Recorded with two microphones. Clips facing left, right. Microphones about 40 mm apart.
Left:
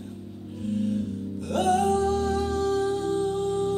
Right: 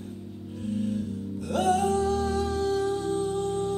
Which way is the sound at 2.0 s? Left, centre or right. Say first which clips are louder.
Left 1 dB; left.